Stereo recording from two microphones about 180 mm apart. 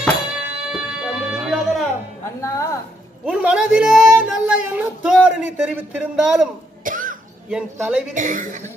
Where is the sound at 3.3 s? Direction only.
5° right (ahead or behind).